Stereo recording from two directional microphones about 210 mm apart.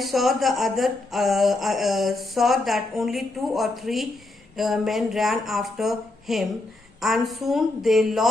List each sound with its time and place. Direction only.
0.0 s speech: centre (ahead or behind)